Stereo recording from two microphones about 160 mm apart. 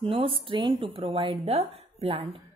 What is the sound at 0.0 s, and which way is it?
A woman's voice, 35° right (ahead or behind).